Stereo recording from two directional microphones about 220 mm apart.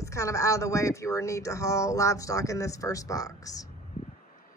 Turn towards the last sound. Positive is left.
turn(degrees=15)  # may be behind; listen again after turning